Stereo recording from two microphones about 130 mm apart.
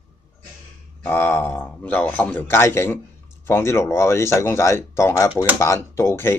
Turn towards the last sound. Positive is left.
turn(degrees=20)  # may be behind; listen again after turning